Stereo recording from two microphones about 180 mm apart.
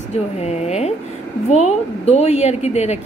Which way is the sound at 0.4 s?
35° left (ahead or behind).